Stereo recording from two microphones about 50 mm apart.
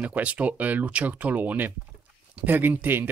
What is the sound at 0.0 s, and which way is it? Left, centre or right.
Speech, right.